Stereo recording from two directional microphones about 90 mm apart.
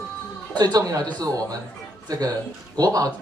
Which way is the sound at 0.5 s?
50° right (ahead or behind).